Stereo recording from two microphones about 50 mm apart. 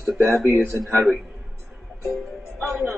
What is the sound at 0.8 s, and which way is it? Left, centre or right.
Speech, centre.